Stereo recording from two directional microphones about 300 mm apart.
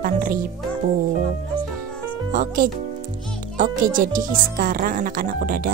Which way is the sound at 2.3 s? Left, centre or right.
Right.